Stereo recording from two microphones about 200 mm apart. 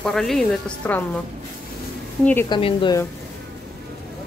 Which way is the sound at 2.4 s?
25° left (ahead or behind).